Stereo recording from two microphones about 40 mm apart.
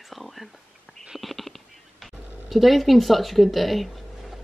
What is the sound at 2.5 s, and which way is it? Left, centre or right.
Speech, centre.